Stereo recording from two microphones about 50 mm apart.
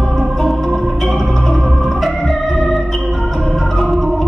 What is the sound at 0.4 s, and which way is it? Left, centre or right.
Organ, centre.